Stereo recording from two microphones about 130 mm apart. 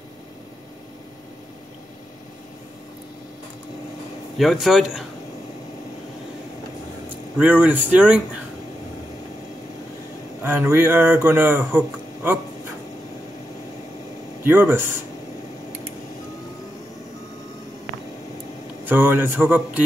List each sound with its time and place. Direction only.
4.4 s speech: centre (ahead or behind)
7.1 s speech: 15° right (ahead or behind)
10.4 s speech: 15° right (ahead or behind)
14.4 s speech: 15° right (ahead or behind)
18.9 s speech: 15° right (ahead or behind)